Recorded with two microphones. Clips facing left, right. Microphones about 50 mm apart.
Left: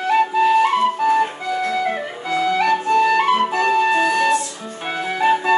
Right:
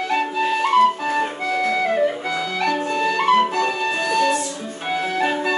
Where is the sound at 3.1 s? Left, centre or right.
Centre.